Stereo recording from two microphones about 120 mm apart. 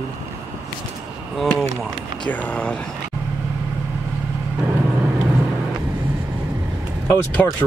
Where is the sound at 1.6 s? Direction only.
5° left (ahead or behind).